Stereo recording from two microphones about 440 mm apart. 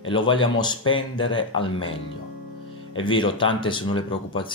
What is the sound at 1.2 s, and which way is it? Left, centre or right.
Speech, left.